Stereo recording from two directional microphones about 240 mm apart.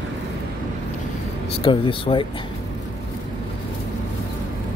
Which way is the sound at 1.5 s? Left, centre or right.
Left.